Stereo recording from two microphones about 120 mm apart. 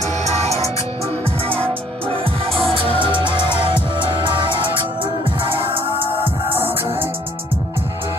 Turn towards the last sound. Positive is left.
turn(degrees=-20)  # may be behind; listen again after turning